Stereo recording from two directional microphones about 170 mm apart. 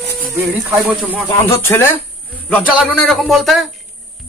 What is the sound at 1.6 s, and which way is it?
A man's voice, 15° left (ahead or behind).